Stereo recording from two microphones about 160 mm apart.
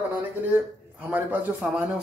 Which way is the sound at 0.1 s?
10° right (ahead or behind).